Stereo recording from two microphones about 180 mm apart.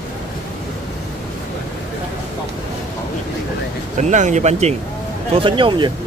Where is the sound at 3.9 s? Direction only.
40° right (ahead or behind).